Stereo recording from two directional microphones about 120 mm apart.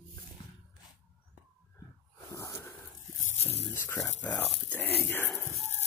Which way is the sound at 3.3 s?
60° left (ahead or behind).